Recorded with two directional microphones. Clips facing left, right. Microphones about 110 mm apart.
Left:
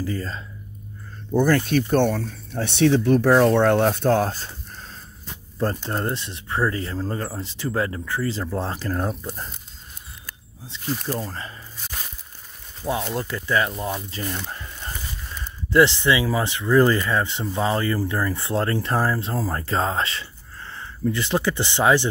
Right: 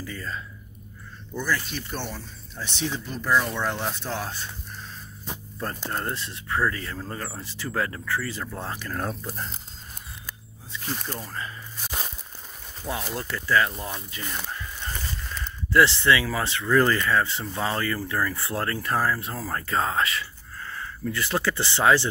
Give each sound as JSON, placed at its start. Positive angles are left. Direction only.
{"t": 0.0, "sound": "speech", "side_deg": 35}
{"t": 1.3, "sound": "speech", "side_deg": 55}
{"t": 5.9, "sound": "speech", "side_deg": 25}
{"t": 8.9, "sound": "speech", "side_deg": 15}
{"t": 10.9, "sound": "speech", "side_deg": 0}
{"t": 11.1, "sound": "speech", "side_deg": 30}
{"t": 13.1, "sound": "speech", "side_deg": 20}
{"t": 14.8, "sound": "a sound", "side_deg": 10}
{"t": 15.7, "sound": "speech", "side_deg": 20}